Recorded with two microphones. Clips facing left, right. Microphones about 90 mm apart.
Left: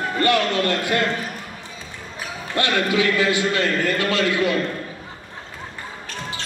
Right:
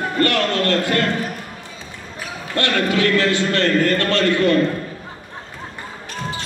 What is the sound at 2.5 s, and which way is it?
A man's voice, 15° left (ahead or behind).